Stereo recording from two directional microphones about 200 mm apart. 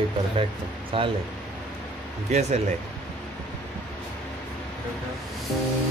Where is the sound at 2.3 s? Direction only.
35° right (ahead or behind).